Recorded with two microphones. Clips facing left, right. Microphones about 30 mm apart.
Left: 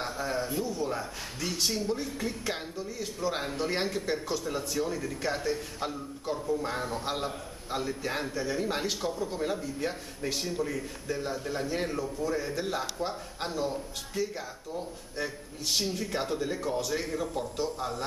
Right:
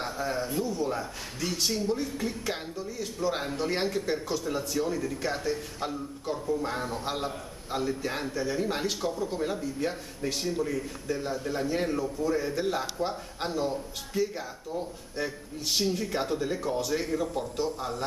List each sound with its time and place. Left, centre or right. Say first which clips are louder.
0.0 s a man's voice: right 1 dB; centre